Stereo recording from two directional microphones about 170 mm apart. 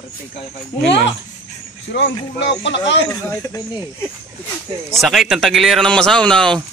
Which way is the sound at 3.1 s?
15° left (ahead or behind).